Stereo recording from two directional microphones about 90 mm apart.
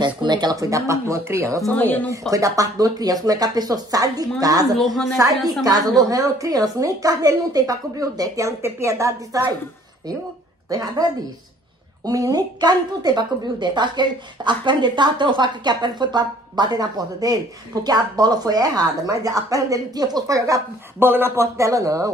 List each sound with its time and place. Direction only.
0.0 s a woman's voice: 55° right (ahead or behind); by 1.6 s 30° right (ahead or behind)
1.7 s speech: 20° left (ahead or behind)
2.3 s a woman's voice: 40° right (ahead or behind)
4.7 s a woman's voice: 5° left (ahead or behind)
5.6 s a woman's voice: 45° right (ahead or behind)
10.7 s a woman's voice: 45° right (ahead or behind)
21.0 s a woman's voice: 25° right (ahead or behind)